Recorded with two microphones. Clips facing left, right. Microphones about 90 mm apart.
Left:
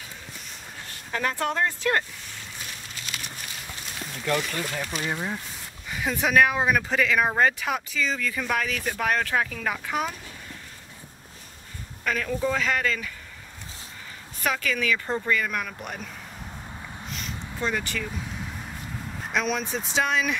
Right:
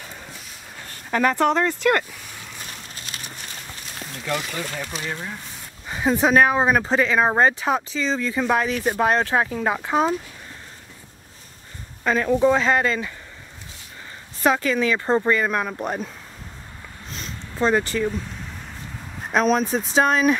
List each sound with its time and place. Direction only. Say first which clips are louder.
1.1 s speech: right 8 dB; 70° right (ahead or behind)
4.0 s speech: left 1 dB; 5° right (ahead or behind); by 5.3 s 15° left (ahead or behind)
5.9 s speech: right 7 dB; 30° right (ahead or behind)
12.0 s speech: right 8 dB; 30° right (ahead or behind)
14.4 s speech: right 7 dB; 30° right (ahead or behind)
17.1 s a sound: right 2 dB; 35° right (ahead or behind)
19.3 s speech: right 8 dB; 40° right (ahead or behind)